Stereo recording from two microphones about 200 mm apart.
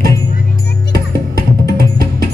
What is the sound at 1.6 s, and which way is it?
Music, 50° right (ahead or behind).